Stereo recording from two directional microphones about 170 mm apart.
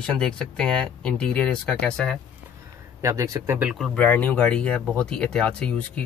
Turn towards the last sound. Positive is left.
turn(degrees=10)  # may be behind; listen again after turning